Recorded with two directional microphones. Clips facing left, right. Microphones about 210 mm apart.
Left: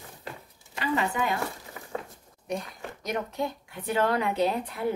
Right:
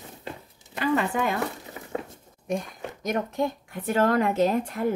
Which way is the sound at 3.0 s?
50° right (ahead or behind).